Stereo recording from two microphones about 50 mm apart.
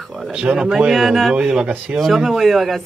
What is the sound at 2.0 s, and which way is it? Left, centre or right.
Speech, centre.